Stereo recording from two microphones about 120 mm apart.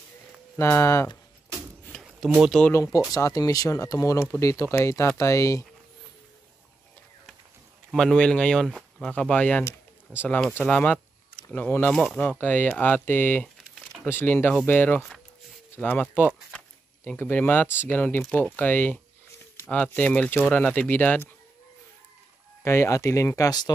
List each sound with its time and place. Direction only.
0.6 s speech: 20° left (ahead or behind)
2.0 s a sound: 5° right (ahead or behind)
2.7 s speech: 25° left (ahead or behind)
7.9 s speech: 5° left (ahead or behind)
10.6 s a sound: 10° left (ahead or behind)
11.4 s speech: 15° left (ahead or behind)
15.0 s a sound: centre (ahead or behind)
15.7 s speech: 15° left (ahead or behind)
22.6 s speech: 20° left (ahead or behind)